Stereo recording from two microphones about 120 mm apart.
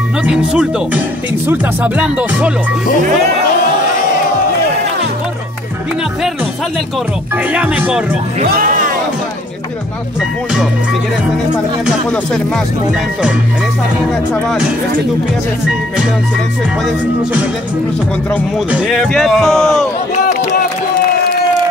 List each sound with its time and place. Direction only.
0.2 s music: 5° right (ahead or behind)
7.5 s music: 10° right (ahead or behind)
18.7 s a man's voice: 5° right (ahead or behind)